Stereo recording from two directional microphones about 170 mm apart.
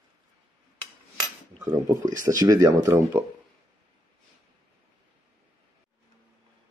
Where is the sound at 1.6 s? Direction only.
20° right (ahead or behind).